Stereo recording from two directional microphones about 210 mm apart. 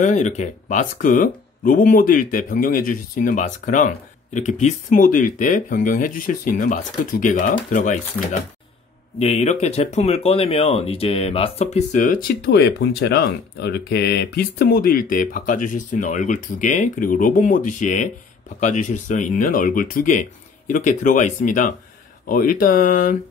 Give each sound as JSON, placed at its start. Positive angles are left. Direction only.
{"t": 0.0, "sound": "speech", "side_deg": 35}